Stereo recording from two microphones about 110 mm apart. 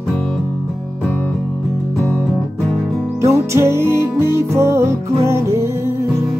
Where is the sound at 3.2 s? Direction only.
25° right (ahead or behind).